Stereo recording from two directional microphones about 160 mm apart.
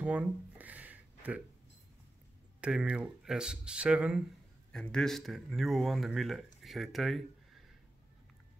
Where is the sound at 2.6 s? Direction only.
5° right (ahead or behind).